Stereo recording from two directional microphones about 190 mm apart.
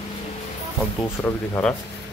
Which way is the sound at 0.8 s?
15° left (ahead or behind).